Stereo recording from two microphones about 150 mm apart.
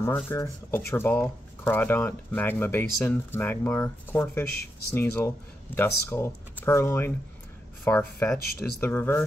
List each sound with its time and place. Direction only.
0.3 s speech: 15° left (ahead or behind)